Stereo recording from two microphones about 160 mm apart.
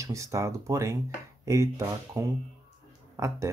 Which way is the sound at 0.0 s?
20° right (ahead or behind).